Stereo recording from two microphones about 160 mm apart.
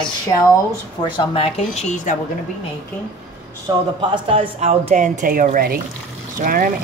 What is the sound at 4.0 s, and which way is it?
Speech, 35° right (ahead or behind).